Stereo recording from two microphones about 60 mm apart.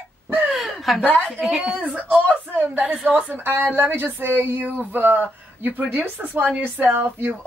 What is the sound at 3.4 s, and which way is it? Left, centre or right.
Speech, right.